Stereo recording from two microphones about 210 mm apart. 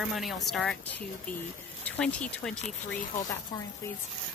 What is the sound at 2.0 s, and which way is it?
Speech, 5° left (ahead or behind).